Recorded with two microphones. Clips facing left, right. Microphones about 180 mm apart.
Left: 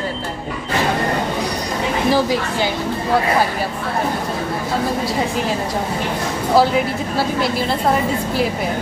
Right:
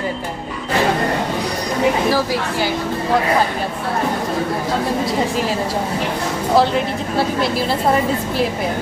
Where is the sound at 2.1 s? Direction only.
20° left (ahead or behind).